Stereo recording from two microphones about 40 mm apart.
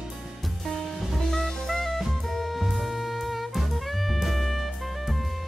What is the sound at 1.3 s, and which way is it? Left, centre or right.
Drum kit, centre.